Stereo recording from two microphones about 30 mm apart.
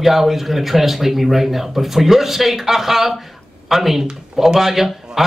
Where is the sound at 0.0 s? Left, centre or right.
Centre.